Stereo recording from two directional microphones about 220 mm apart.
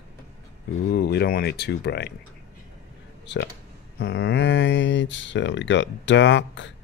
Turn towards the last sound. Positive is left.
turn(degrees=55)  # may be behind; listen again after turning